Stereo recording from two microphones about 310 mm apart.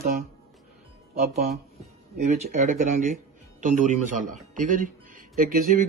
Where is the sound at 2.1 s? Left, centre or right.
Right.